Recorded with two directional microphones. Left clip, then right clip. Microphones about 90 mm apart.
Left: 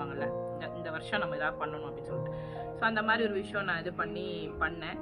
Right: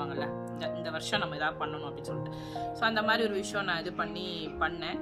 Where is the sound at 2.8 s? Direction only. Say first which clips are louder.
Right 1 dB; 50° right (ahead or behind).